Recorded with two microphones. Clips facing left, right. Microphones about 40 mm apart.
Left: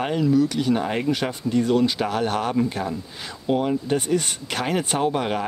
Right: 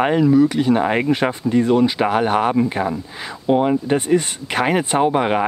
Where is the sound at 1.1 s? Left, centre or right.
Right.